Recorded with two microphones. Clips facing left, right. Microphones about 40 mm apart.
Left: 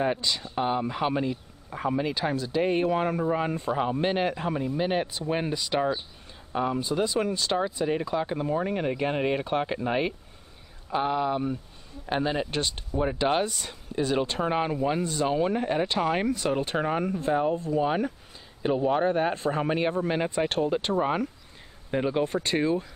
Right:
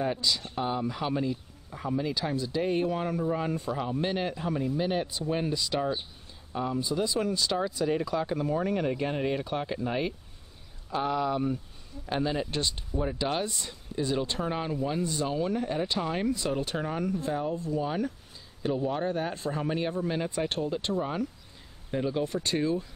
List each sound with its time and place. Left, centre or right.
0.0 s speech: left